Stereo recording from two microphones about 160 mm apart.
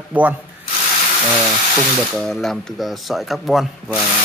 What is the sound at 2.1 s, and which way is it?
Speech, centre (ahead or behind).